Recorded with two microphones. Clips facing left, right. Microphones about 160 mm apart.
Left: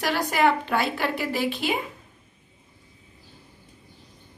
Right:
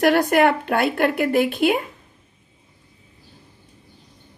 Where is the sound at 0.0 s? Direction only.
55° right (ahead or behind).